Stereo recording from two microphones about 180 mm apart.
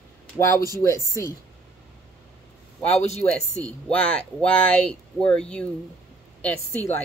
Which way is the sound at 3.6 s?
5° left (ahead or behind).